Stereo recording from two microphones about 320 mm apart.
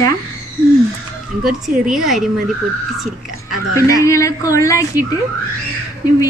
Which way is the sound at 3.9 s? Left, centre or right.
Centre.